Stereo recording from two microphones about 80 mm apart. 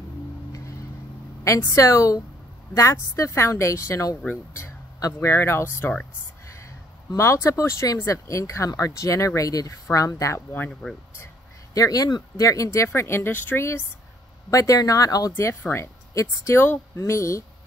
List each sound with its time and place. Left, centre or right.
1.4 s speech: left
7.2 s speech: left
11.7 s speech: left
14.5 s speech: left
15.6 s speech: left